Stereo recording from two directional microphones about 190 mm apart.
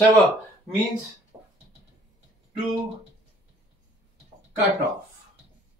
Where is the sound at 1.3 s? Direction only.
15° right (ahead or behind).